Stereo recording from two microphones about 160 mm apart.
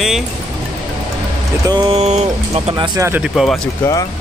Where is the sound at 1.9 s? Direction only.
45° right (ahead or behind).